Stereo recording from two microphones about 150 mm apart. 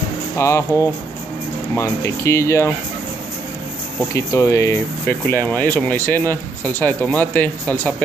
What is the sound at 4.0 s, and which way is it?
Speech, 20° left (ahead or behind).